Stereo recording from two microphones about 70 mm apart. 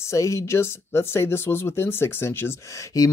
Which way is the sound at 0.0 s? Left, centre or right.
Left.